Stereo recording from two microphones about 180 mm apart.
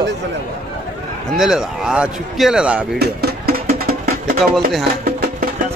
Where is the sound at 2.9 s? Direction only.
60° right (ahead or behind).